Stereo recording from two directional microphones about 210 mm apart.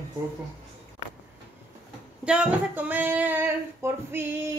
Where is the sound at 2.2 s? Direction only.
5° right (ahead or behind).